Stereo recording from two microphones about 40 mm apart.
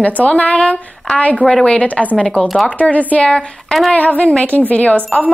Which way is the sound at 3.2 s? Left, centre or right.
Centre.